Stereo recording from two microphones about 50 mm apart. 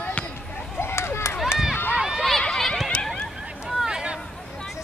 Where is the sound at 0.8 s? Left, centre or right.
Left.